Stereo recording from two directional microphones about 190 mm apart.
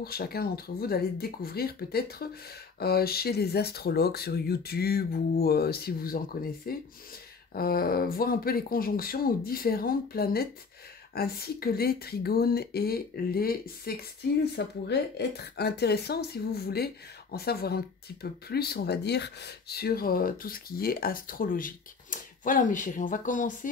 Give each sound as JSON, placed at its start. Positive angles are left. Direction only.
{"t": 0.0, "sound": "speech", "side_deg": 55}